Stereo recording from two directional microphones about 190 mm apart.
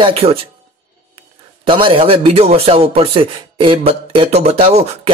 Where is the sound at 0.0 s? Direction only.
30° right (ahead or behind).